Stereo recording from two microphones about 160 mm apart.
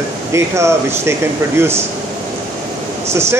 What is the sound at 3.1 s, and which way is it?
Speech, 15° right (ahead or behind).